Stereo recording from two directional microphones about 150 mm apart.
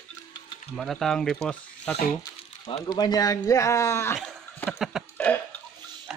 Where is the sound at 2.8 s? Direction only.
25° left (ahead or behind).